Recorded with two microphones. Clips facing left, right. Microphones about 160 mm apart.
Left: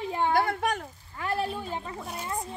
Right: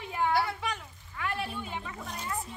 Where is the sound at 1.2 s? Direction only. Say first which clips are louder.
Left 5 dB; 35° left (ahead or behind).